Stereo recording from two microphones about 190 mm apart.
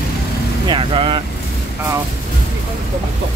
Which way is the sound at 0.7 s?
30° right (ahead or behind).